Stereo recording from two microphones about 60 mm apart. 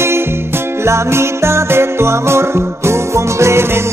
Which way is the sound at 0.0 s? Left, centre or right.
Right.